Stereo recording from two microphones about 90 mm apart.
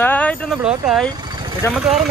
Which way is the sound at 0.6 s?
10° right (ahead or behind).